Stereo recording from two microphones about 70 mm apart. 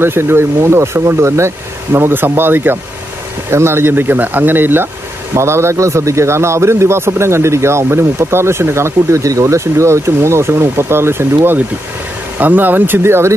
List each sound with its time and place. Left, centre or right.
0.0 s a man's voice: right